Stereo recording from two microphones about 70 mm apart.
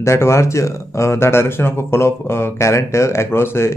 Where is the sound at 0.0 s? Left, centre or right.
Left.